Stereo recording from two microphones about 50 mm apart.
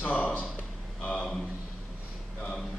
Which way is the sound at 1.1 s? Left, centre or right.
Centre.